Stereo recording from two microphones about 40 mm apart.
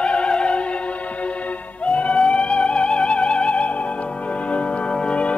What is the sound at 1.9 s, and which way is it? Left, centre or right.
Music, left.